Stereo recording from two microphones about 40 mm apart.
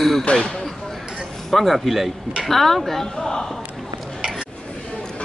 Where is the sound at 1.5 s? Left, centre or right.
Centre.